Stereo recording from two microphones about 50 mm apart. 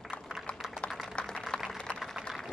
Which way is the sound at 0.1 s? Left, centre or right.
Left.